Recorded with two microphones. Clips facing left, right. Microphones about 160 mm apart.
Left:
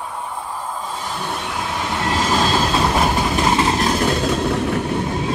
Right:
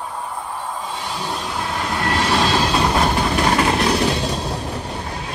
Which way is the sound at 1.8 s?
Centre (ahead or behind).